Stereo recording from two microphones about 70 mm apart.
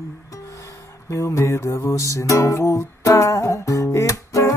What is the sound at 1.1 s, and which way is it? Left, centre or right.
Music, left.